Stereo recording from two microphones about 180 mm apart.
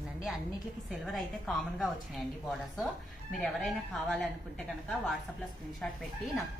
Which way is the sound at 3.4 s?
5° left (ahead or behind).